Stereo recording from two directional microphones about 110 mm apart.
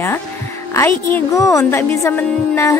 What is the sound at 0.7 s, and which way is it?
Speech, 25° left (ahead or behind).